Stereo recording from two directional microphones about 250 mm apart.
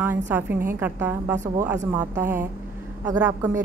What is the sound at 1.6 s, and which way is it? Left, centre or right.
Speech, centre.